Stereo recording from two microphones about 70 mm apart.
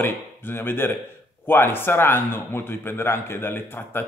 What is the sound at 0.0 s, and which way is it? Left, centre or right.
Speech, left.